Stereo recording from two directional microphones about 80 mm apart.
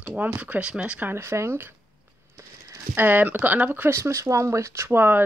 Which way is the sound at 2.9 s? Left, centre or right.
Right.